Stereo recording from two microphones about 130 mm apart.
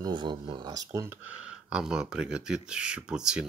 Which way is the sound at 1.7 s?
5° right (ahead or behind).